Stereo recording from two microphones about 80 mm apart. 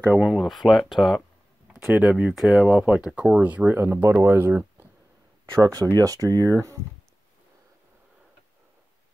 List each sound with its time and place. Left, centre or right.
0.2 s speech: centre
2.4 s speech: centre
3.3 s speech: centre
5.6 s speech: right